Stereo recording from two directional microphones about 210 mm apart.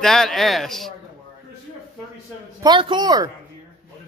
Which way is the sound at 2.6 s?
20° right (ahead or behind).